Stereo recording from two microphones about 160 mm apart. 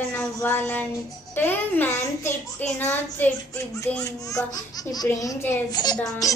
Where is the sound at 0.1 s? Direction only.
15° left (ahead or behind).